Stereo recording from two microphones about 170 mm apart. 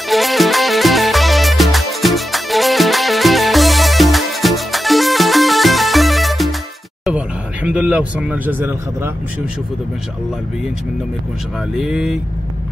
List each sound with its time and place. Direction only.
0.1 s music: centre (ahead or behind)
7.1 s speech: 5° right (ahead or behind)
11.7 s speech: 5° right (ahead or behind)